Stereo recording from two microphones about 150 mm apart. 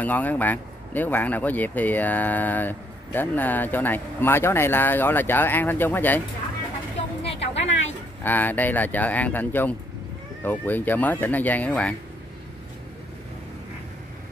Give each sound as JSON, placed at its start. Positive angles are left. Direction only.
{"t": 0.0, "sound": "speech", "side_deg": 10}
{"t": 7.2, "sound": "a sound", "side_deg": 45}
{"t": 8.2, "sound": "speech", "side_deg": 10}